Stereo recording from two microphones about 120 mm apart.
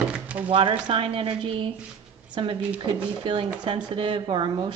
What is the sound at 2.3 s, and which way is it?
A woman's voice, 45° right (ahead or behind).